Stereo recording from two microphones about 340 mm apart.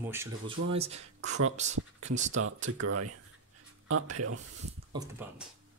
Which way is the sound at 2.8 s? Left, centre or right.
Right.